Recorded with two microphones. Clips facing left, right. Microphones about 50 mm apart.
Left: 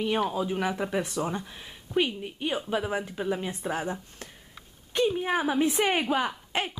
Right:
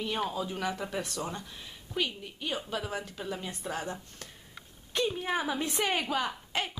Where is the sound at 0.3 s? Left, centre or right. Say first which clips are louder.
Left 5 dB; left.